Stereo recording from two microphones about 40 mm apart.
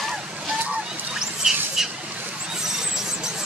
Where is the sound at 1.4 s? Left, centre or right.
Centre.